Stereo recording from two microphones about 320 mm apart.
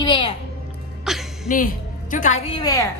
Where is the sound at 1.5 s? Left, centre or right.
Left.